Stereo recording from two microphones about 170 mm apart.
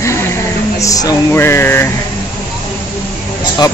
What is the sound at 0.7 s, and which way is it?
Speech, 20° left (ahead or behind).